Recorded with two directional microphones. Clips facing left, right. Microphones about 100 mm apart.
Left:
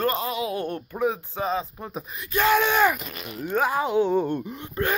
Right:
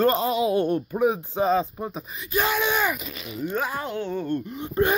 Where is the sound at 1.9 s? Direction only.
5° left (ahead or behind).